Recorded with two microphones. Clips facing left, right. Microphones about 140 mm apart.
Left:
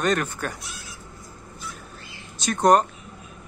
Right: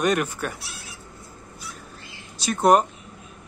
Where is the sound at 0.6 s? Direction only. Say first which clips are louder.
Even; 65° right (ahead or behind).